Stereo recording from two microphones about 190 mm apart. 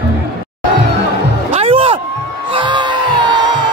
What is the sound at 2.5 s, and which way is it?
Crowd, 25° right (ahead or behind).